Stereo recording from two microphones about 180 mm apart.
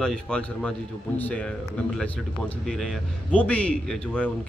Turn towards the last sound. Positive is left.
turn(degrees=5)  # may be behind; listen again after turning